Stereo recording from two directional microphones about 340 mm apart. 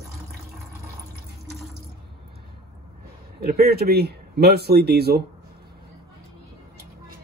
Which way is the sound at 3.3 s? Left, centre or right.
Right.